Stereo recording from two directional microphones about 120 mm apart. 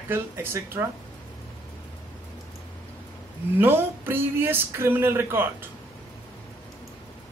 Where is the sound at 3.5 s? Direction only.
15° right (ahead or behind).